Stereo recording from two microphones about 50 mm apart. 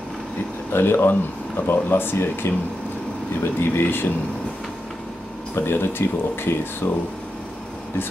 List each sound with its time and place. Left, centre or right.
0.7 s speech: left
3.5 s speech: left
5.5 s speech: left